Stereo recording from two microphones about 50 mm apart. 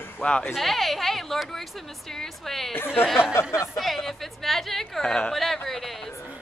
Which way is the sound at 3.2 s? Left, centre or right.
Left.